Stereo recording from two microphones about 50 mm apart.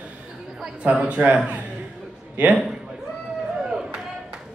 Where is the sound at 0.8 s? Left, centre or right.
Right.